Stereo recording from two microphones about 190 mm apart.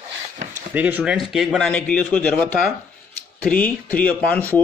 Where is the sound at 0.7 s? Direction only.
10° right (ahead or behind).